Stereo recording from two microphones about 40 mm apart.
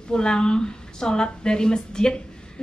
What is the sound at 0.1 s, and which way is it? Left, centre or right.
Speech, left.